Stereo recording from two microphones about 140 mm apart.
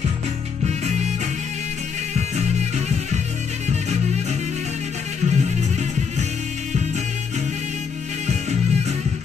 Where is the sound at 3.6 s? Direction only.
55° right (ahead or behind).